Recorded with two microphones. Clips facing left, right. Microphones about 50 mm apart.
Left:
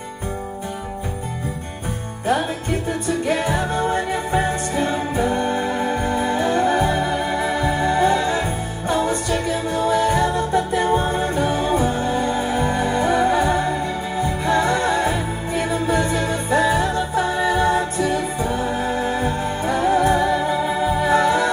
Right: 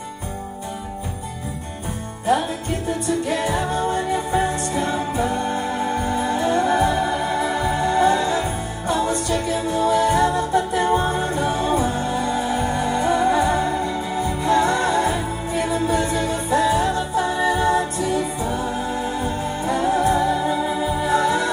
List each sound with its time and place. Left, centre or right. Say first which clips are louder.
3.3 s music: left 1 dB; left
20.7 s music: left 3 dB; centre
21.1 s music: left 2 dB; left